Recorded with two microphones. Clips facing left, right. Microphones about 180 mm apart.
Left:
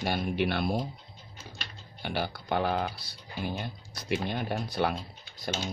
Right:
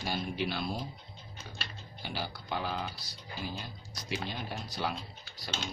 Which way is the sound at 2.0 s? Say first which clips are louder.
Left 7 dB; 60° left (ahead or behind).